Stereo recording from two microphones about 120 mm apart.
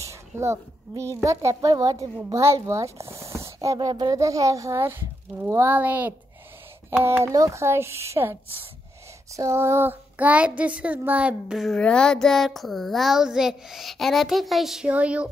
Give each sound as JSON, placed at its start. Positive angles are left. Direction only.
{"t": 0.0, "sound": "a woman's voice", "side_deg": -25}
{"t": 5.4, "sound": "child singing", "side_deg": -20}
{"t": 6.9, "sound": "a woman's voice", "side_deg": -20}
{"t": 9.3, "sound": "child singing", "side_deg": -25}